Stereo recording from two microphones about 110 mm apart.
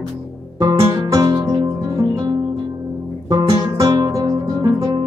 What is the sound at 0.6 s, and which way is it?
Music, 30° right (ahead or behind).